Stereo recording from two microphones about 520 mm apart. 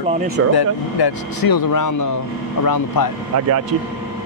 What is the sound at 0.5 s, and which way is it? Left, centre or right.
Speech, left.